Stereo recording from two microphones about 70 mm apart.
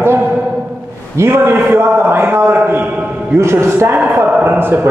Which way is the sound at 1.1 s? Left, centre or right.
Right.